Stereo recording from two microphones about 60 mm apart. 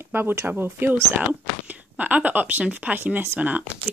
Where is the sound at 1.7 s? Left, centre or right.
Right.